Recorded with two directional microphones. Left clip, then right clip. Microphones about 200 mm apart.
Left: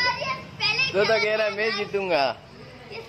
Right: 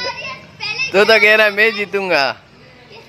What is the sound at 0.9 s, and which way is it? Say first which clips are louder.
Speech: right 16 dB; 40° right (ahead or behind).